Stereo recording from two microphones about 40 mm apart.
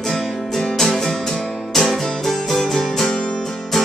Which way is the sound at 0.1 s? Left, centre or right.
Centre.